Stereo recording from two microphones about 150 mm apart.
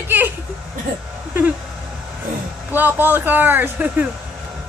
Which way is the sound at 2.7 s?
10° right (ahead or behind).